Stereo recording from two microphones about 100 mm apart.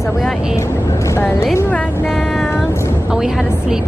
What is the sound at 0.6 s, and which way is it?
Speech, 30° left (ahead or behind).